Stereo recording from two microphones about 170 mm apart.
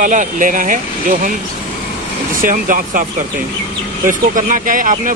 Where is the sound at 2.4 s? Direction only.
55° right (ahead or behind).